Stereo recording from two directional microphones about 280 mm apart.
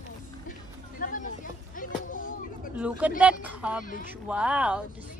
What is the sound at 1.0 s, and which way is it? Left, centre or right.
Music, left.